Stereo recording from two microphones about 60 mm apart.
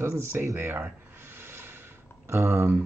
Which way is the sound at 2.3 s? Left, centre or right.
Right.